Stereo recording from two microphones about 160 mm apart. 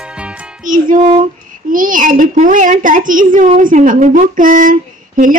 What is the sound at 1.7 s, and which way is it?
A child's voice, 55° right (ahead or behind).